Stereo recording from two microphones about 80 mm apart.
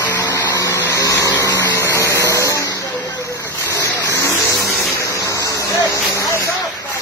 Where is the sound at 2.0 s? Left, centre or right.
Left.